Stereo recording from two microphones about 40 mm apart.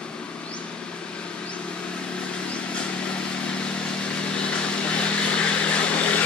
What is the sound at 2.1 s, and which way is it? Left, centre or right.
Vehicle, left.